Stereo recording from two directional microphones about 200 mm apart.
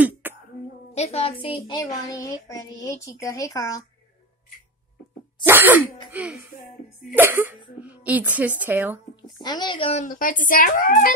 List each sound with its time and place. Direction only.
0.2 s cough: 10° right (ahead or behind)
0.9 s a woman's voice: 30° left (ahead or behind)
1.4 s child singing: 25° left (ahead or behind)
5.5 s sneeze: 10° right (ahead or behind)
6.1 s a woman's voice: 5° right (ahead or behind)
9.4 s a woman's voice: 20° left (ahead or behind)
10.0 s speech: 40° left (ahead or behind)